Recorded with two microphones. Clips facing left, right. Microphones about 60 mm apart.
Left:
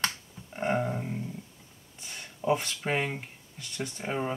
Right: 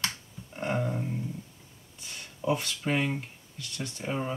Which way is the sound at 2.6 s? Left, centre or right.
Left.